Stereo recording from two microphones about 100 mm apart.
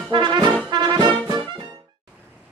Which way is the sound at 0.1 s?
50° right (ahead or behind).